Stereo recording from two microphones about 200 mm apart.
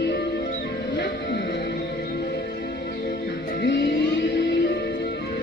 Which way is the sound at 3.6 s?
65° left (ahead or behind).